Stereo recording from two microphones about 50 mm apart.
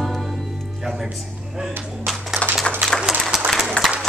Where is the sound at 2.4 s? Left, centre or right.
Right.